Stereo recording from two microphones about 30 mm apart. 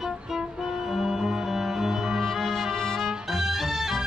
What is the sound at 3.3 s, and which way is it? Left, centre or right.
Music, centre.